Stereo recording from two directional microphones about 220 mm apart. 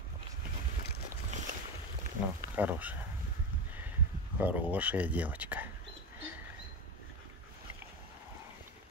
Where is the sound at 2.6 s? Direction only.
5° right (ahead or behind).